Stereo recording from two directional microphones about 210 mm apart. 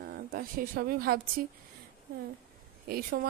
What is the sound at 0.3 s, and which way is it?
Speech, 45° right (ahead or behind).